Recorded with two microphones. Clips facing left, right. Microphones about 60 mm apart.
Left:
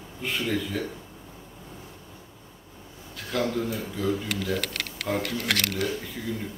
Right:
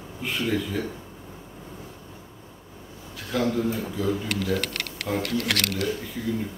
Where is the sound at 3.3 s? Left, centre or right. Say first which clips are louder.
Right 2 dB; centre.